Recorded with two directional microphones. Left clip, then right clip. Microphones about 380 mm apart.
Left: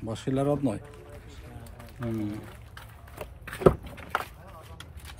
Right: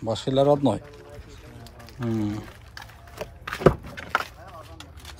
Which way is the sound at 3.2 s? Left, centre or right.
Centre.